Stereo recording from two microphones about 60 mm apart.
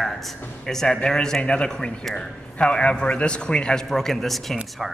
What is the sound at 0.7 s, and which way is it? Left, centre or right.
A man's voice, centre.